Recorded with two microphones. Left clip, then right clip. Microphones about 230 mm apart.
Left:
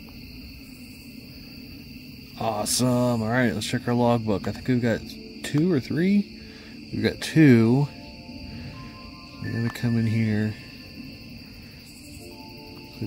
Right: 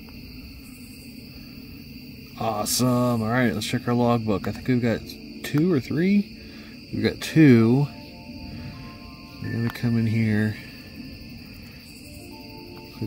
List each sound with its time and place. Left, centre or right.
2.3 s speech: centre
9.5 s speech: centre